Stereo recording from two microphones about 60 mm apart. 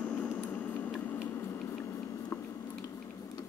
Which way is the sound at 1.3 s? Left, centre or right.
Left.